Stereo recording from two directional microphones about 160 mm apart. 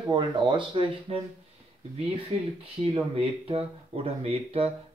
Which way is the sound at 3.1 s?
35° right (ahead or behind).